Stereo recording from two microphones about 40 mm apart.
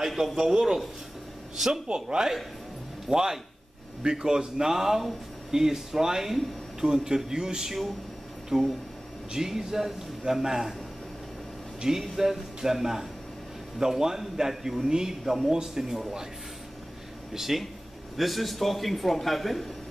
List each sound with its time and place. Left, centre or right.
0.2 s a man's voice: centre
1.9 s a man's voice: right
11.8 s a man's voice: centre
17.3 s a man's voice: centre